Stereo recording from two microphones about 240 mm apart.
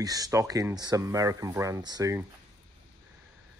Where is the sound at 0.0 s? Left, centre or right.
Centre.